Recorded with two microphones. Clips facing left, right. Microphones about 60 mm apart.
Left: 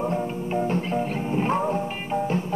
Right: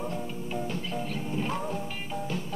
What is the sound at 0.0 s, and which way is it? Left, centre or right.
Music, left.